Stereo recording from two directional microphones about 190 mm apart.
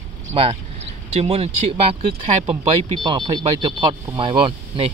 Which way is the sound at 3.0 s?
25° right (ahead or behind).